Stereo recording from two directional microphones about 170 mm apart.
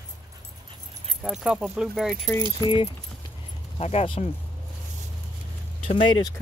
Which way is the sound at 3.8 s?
35° left (ahead or behind).